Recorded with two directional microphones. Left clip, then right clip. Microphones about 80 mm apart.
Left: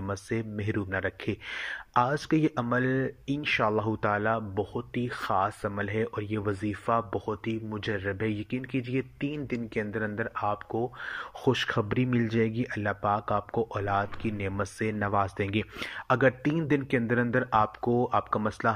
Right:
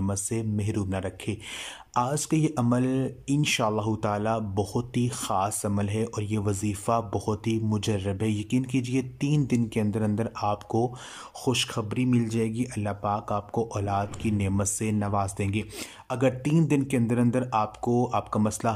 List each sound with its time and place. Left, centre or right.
0.1 s speech: right
11.4 s speech: centre
13.5 s speech: right